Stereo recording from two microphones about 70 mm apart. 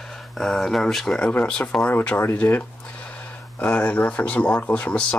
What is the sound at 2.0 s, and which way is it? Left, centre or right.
Speech, left.